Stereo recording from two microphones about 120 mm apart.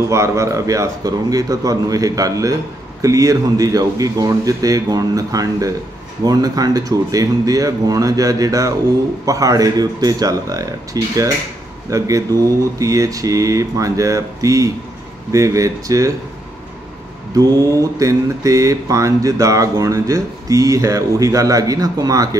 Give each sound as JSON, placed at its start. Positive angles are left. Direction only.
{"t": 0.1, "sound": "speech", "side_deg": -25}
{"t": 17.4, "sound": "speech", "side_deg": -30}